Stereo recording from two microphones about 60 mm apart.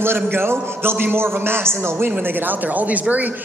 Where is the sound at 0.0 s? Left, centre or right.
Right.